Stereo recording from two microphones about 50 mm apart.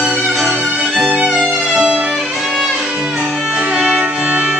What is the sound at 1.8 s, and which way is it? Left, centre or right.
Music, right.